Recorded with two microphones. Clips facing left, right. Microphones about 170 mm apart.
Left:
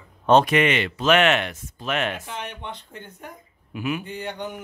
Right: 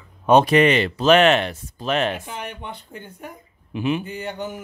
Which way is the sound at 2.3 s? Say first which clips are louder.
Right 1 dB; 10° right (ahead or behind).